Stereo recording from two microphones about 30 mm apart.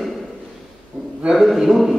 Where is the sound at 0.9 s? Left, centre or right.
Right.